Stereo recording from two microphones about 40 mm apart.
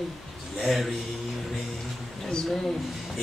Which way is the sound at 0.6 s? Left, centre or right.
Centre.